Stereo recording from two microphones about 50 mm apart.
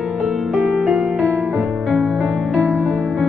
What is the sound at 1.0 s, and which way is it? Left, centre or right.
Music, centre.